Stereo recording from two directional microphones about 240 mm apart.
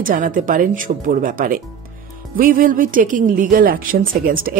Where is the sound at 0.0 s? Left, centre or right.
Right.